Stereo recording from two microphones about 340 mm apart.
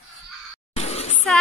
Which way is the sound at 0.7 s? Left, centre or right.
Centre.